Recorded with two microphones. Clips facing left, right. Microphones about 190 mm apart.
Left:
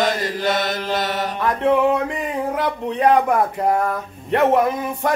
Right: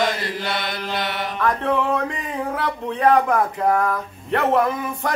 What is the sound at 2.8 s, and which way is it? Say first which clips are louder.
Speech: left 1 dB; 20° left (ahead or behind).